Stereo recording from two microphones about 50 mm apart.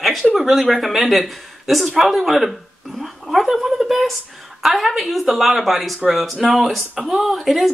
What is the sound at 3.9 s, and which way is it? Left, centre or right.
Speech, centre.